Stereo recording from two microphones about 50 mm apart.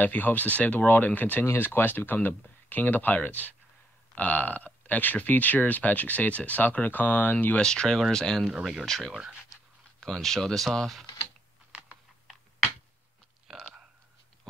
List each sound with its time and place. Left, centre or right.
0.0 s speech: left
1.4 s speech: left
7.6 s speech: centre
13.5 s a sound: centre